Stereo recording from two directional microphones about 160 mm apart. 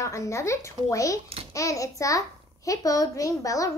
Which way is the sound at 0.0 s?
20° left (ahead or behind).